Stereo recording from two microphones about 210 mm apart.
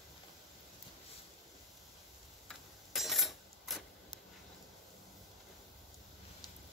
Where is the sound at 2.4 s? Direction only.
Centre (ahead or behind).